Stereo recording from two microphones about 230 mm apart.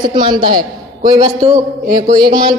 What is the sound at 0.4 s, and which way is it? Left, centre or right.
A man's voice, right.